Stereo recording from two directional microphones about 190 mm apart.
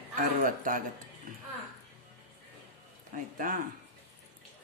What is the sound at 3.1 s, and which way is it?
Speech, 45° right (ahead or behind).